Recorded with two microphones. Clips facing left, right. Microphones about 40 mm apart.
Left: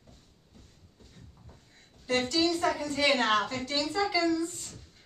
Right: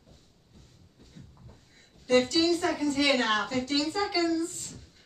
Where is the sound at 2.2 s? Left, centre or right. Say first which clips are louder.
Even; centre.